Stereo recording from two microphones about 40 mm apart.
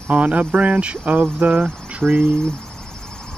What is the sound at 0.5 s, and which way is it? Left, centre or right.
Speech, right.